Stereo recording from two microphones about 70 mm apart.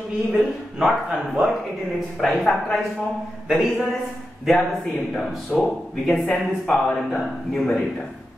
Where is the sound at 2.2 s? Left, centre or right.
Centre.